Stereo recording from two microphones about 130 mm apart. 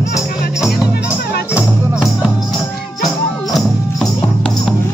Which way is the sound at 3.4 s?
Centre (ahead or behind).